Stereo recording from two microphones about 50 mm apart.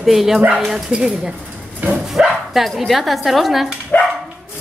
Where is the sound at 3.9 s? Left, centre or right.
Left.